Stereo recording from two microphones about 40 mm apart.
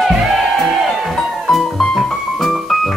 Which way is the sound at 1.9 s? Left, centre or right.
Centre.